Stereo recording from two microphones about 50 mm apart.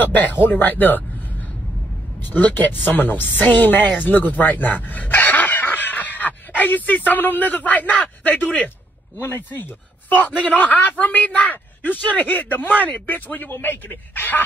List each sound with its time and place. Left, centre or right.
0.0 s speech: left
2.3 s a woman's voice: left
9.2 s speech: left